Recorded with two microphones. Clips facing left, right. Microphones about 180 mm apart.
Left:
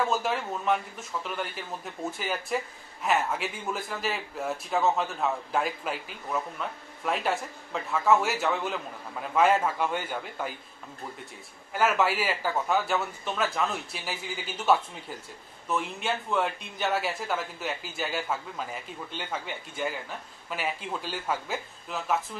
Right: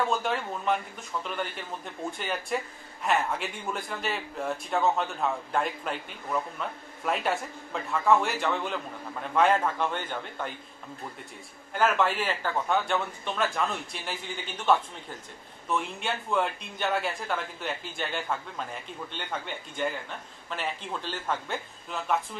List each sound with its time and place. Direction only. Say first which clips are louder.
0.0 s speech: even; centre (ahead or behind)
11.7 s speech: even; 5° left (ahead or behind)